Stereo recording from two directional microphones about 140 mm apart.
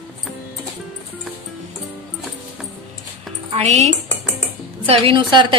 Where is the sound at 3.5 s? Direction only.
50° right (ahead or behind).